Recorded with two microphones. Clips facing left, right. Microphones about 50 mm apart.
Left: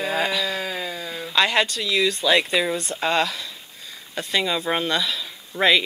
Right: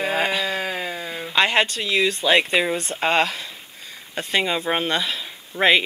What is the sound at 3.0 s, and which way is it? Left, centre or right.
Speech, right.